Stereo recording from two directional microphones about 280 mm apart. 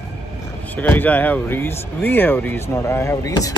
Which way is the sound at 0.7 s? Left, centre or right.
Centre.